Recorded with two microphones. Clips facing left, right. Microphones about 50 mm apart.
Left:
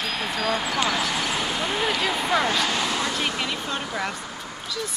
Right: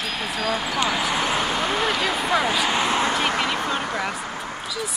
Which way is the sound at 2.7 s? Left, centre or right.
Right.